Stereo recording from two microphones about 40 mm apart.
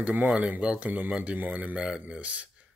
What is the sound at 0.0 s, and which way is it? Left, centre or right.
Speech, right.